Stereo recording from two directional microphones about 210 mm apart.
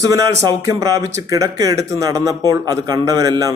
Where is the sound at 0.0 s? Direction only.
15° right (ahead or behind).